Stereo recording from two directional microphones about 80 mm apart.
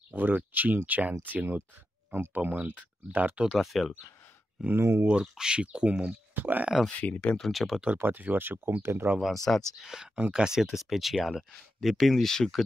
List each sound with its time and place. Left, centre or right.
0.1 s speech: right
3.4 s speech: centre
4.7 s speech: right
5.0 s speech: centre
7.0 s speech: centre
8.0 s speech: right
9.5 s speech: centre
9.8 s speech: centre